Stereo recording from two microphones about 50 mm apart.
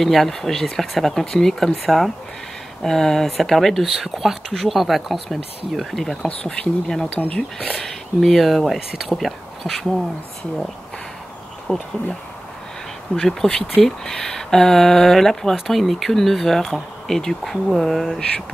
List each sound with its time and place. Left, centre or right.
0.0 s speech: centre
6.4 s speech: left
7.8 s speech: centre
11.6 s speech: centre